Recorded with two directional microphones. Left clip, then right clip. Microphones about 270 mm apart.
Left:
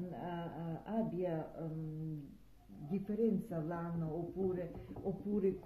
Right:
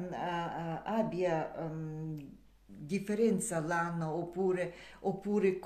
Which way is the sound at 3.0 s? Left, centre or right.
Centre.